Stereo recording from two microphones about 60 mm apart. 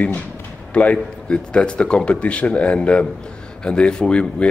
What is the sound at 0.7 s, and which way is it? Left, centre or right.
Speech, left.